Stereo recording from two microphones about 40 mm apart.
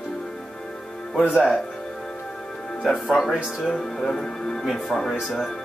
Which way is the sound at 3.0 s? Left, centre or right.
Centre.